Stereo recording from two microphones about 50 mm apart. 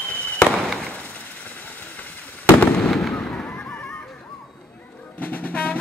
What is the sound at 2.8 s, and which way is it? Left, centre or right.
Fireworks, centre.